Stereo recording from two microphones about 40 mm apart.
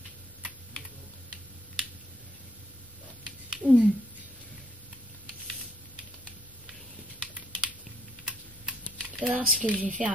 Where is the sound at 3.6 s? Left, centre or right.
Centre.